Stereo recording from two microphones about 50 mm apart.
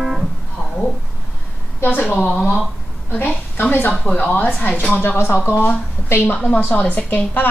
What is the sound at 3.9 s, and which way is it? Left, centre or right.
Speech, left.